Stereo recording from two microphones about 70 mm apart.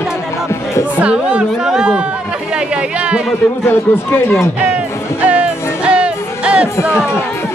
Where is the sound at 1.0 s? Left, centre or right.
Centre.